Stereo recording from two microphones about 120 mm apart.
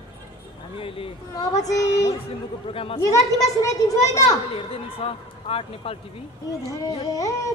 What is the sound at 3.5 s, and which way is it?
Speech, 30° left (ahead or behind).